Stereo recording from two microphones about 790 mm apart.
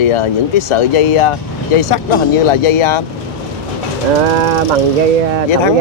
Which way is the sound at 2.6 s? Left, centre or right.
Left.